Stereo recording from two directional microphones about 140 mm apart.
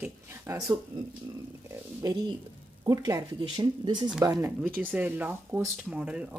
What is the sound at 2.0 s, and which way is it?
Speech, 25° right (ahead or behind).